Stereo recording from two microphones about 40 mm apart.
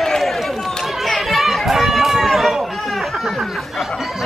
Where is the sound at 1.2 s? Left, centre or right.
Centre.